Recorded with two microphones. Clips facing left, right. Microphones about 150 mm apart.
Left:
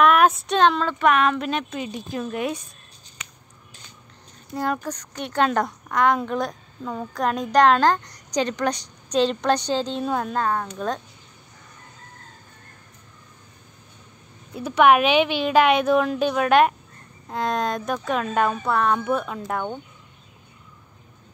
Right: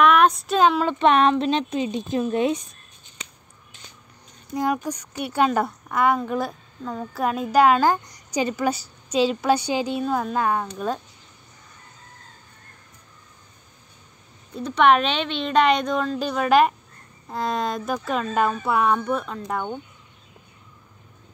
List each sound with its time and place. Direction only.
0.0 s speech: centre (ahead or behind)
0.8 s a woman's voice: 25° right (ahead or behind)
4.6 s a woman's voice: 10° right (ahead or behind)
10.4 s a woman's voice: 15° right (ahead or behind)
14.5 s a woman's voice: 5° left (ahead or behind)
18.9 s a woman's voice: 5° left (ahead or behind)